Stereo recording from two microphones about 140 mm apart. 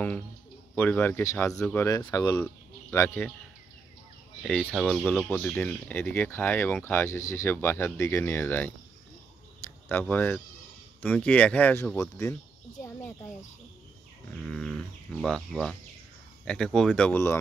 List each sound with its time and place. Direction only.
0.7 s speech: 10° left (ahead or behind)
1.6 s speech: 10° left (ahead or behind)
1.9 s speech: 20° left (ahead or behind)
4.4 s speech: 10° left (ahead or behind)
9.8 s speech: 15° left (ahead or behind)
11.8 s speech: 20° left (ahead or behind)
14.4 s speech: centre (ahead or behind)